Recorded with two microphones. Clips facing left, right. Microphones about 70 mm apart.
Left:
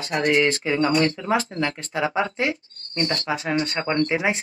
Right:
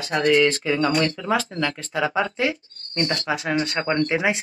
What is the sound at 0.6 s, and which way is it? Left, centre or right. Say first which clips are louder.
Speech: left 1 dB; left.